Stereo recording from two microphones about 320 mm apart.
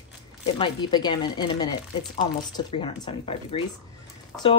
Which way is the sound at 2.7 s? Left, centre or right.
Centre.